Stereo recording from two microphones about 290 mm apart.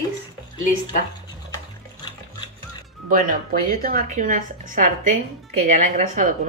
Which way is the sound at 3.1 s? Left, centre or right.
Right.